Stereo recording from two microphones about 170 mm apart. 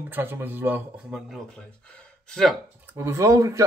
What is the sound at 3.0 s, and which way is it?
Speech, 15° right (ahead or behind).